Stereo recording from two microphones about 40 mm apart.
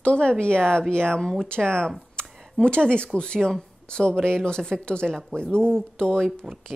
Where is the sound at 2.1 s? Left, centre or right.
Left.